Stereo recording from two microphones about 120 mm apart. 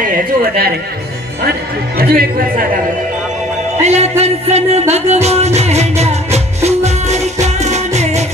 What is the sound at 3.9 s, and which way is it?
Speech, 65° right (ahead or behind).